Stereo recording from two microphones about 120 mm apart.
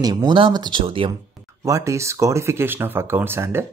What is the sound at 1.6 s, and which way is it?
Speech, 25° right (ahead or behind).